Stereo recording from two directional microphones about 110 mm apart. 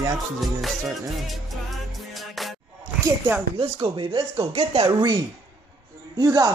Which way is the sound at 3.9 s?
50° right (ahead or behind).